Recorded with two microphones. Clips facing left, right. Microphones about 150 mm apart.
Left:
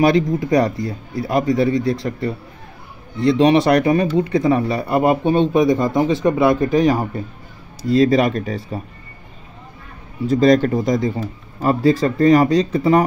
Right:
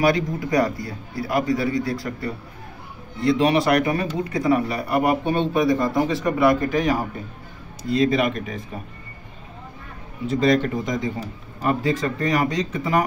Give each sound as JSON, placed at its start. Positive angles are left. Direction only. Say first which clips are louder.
{"t": 0.0, "sound": "speech", "louder": "left 5 dB", "side_deg": 25}
{"t": 10.2, "sound": "speech", "louder": "left 6 dB", "side_deg": 40}